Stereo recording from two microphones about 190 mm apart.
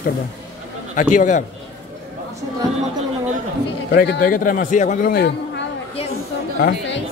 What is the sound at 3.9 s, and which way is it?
A man's voice, 55° left (ahead or behind).